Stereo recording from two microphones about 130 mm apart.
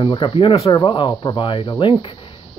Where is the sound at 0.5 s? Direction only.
30° left (ahead or behind).